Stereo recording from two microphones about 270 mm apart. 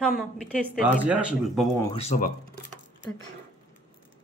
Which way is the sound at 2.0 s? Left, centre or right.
Left.